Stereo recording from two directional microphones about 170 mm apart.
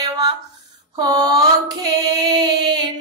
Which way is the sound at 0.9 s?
25° right (ahead or behind).